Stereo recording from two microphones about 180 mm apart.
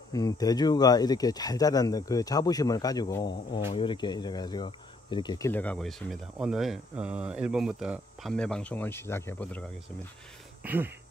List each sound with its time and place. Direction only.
0.1 s speech: 20° left (ahead or behind)
5.5 s speech: 10° left (ahead or behind)
10.6 s speech: 10° right (ahead or behind)